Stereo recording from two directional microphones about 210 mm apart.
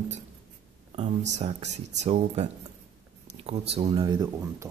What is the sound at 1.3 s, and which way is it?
A man's voice, 30° right (ahead or behind).